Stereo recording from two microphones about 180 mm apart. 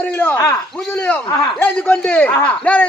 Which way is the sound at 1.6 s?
5° left (ahead or behind).